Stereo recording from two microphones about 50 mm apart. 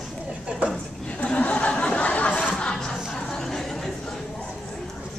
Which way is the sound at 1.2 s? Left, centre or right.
Left.